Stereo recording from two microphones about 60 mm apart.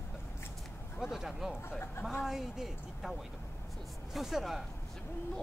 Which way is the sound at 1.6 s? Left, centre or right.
Left.